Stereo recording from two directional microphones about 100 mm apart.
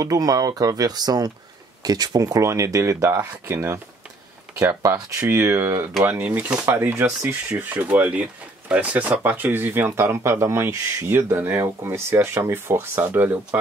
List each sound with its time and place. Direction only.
0.0 s speech: 35° right (ahead or behind); by 13.6 s 20° right (ahead or behind)